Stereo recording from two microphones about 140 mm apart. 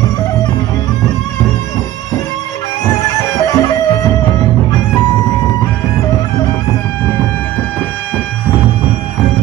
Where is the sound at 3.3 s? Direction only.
25° left (ahead or behind).